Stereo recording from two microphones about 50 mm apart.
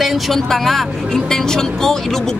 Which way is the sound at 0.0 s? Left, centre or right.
Centre.